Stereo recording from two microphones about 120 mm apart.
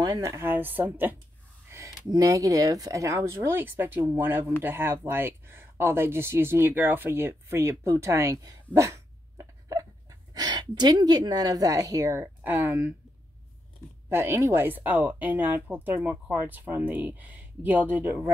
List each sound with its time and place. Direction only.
0.0 s speech: 30° right (ahead or behind)
1.7 s speech: 25° right (ahead or behind)
8.5 s dog: 25° right (ahead or behind)
10.3 s a woman's voice: 35° right (ahead or behind); by 12.9 s 20° right (ahead or behind)
14.0 s speech: 20° right (ahead or behind)